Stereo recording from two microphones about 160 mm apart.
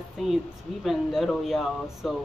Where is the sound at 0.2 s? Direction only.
Centre (ahead or behind).